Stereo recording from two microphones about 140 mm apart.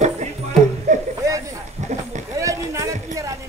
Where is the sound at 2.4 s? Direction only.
20° right (ahead or behind).